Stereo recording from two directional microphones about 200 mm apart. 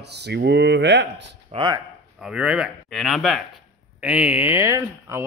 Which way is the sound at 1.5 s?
20° right (ahead or behind).